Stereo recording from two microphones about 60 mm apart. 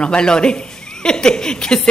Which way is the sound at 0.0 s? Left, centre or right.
Centre.